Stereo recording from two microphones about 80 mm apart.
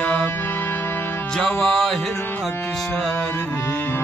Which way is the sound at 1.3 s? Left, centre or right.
Centre.